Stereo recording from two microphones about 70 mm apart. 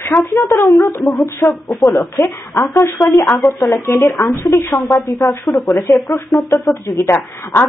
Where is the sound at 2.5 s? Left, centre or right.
Left.